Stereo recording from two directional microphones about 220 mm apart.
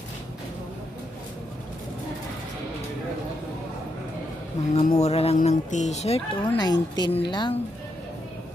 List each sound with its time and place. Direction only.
4.7 s speech: 30° left (ahead or behind)